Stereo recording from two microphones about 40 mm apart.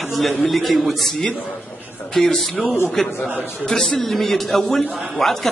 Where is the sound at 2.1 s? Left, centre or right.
Centre.